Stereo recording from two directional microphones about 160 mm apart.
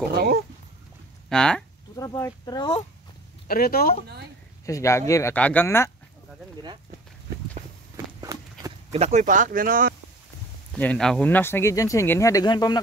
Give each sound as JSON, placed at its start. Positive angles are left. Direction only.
{"t": 0.1, "sound": "speech", "side_deg": -90}
{"t": 1.3, "sound": "speech", "side_deg": 5}
{"t": 2.0, "sound": "speech", "side_deg": 20}
{"t": 3.4, "sound": "speech", "side_deg": 65}
{"t": 4.6, "sound": "speech", "side_deg": 20}
{"t": 8.2, "sound": "run", "side_deg": -20}
{"t": 8.9, "sound": "speech", "side_deg": -45}
{"t": 10.7, "sound": "speech", "side_deg": 5}